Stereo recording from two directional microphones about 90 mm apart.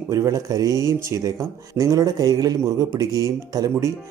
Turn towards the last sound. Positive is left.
turn(degrees=-35)  # may be behind; listen again after turning